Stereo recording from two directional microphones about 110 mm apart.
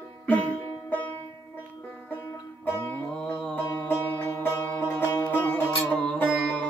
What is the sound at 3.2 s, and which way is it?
Music, 10° left (ahead or behind).